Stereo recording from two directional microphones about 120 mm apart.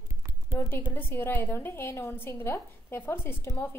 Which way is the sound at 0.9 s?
20° left (ahead or behind).